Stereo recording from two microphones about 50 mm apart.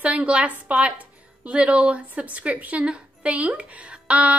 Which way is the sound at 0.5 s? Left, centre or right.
Right.